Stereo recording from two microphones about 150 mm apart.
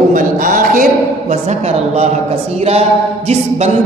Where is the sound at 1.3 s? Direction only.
45° right (ahead or behind).